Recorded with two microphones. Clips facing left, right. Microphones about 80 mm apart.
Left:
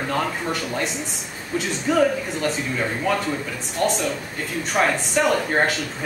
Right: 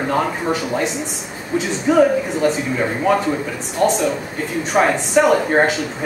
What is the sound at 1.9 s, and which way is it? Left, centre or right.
Speech, centre.